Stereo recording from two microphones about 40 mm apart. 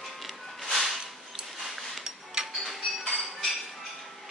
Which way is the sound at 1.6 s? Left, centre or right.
Centre.